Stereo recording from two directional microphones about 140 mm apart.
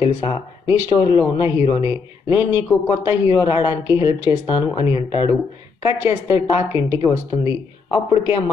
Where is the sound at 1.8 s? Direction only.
20° right (ahead or behind).